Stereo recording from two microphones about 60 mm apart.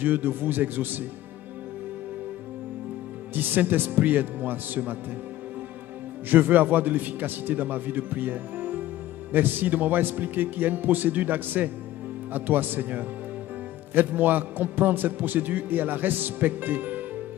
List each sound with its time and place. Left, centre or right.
0.0 s a man's voice: right
3.3 s a man's voice: right
6.2 s a man's voice: right